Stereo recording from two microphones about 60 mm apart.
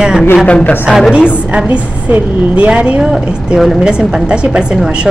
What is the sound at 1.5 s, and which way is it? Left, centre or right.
A woman's voice, right.